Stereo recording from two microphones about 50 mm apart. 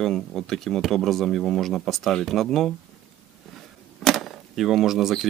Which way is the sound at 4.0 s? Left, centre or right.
Centre.